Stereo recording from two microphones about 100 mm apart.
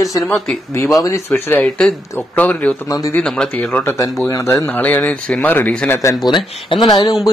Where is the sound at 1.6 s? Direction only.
10° left (ahead or behind).